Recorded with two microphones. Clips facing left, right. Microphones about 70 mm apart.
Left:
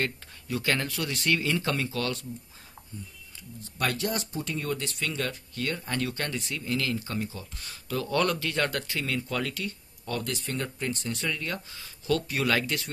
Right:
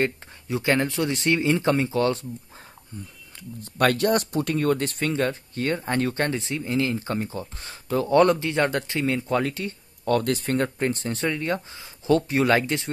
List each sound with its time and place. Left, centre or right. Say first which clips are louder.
0.0 s speech: right 6 dB; right
3.3 s speech: right 9 dB; right
10.0 s speech: right 10 dB; right
10.9 s speech: right 6 dB; right